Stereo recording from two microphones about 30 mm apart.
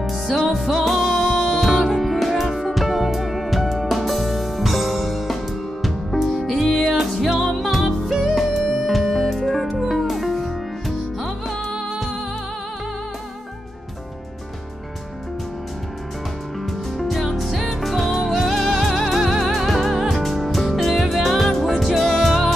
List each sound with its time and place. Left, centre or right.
0.5 s music: centre
7.1 s music: centre
16.6 s music: centre
19.4 s music: centre